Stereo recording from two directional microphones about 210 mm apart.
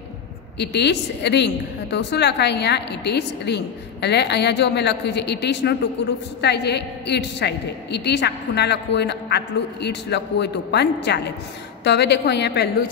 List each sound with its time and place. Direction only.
0.6 s a woman's voice: 55° left (ahead or behind)